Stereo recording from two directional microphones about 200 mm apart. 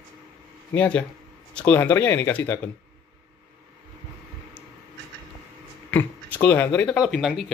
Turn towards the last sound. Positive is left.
turn(degrees=-5)  # may be behind; listen again after turning